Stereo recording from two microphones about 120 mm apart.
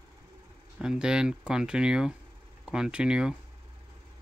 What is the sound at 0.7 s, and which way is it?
Speech, 5° right (ahead or behind).